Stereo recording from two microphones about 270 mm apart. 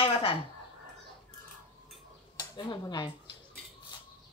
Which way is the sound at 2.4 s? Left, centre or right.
Centre.